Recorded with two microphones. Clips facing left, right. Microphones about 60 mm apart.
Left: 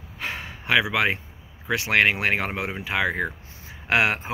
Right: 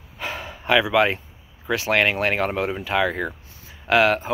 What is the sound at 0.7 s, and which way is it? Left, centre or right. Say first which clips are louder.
Speech: right 3 dB; centre.